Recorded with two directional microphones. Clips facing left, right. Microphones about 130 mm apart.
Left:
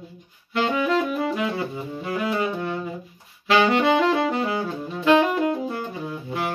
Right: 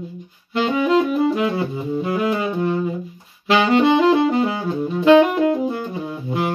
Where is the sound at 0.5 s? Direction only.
25° right (ahead or behind).